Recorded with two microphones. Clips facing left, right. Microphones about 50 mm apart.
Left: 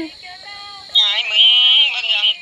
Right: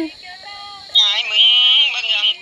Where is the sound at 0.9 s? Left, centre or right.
Centre.